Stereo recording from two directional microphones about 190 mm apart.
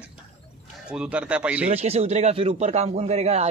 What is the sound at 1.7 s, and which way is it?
A man's voice, 35° right (ahead or behind).